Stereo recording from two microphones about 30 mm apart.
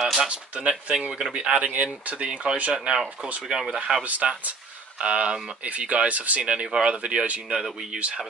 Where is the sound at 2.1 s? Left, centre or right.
Right.